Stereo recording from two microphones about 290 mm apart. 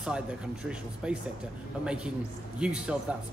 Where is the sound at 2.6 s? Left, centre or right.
Centre.